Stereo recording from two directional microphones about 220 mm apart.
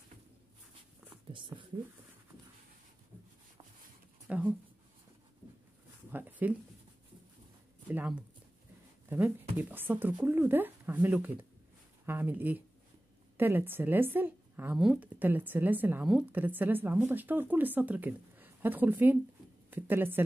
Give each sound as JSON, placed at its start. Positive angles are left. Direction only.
{"t": 1.3, "sound": "speech", "side_deg": -20}
{"t": 4.3, "sound": "speech", "side_deg": -5}
{"t": 6.0, "sound": "a sound", "side_deg": -10}
{"t": 7.9, "sound": "speech", "side_deg": -5}